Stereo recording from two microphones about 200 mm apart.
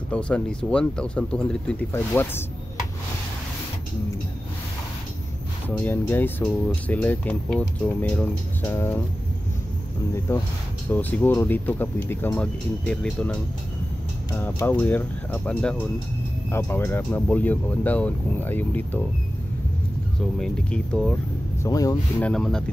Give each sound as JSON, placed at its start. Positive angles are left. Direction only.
{"t": 0.1, "sound": "speech", "side_deg": 5}
{"t": 5.7, "sound": "speech", "side_deg": 10}
{"t": 10.1, "sound": "speech", "side_deg": 10}
{"t": 20.3, "sound": "speech", "side_deg": 5}
{"t": 21.5, "sound": "speech", "side_deg": 15}
{"t": 22.2, "sound": "speech", "side_deg": 5}